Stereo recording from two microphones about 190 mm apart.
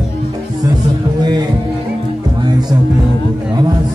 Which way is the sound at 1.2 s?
20° right (ahead or behind).